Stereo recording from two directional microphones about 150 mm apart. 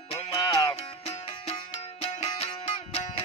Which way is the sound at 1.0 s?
45° left (ahead or behind).